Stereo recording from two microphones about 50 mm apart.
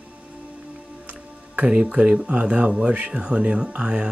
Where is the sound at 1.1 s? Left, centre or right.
Right.